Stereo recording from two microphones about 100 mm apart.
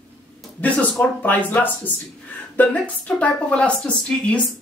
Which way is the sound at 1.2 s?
20° left (ahead or behind).